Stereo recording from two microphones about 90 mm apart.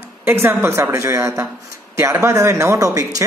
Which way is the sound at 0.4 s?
25° right (ahead or behind).